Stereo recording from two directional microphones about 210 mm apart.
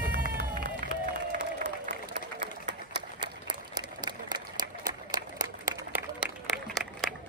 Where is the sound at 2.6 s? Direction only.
55° right (ahead or behind).